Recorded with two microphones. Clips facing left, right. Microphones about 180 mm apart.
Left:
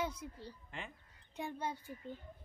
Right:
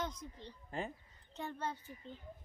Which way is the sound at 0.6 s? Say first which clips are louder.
Right 10 dB; 40° right (ahead or behind).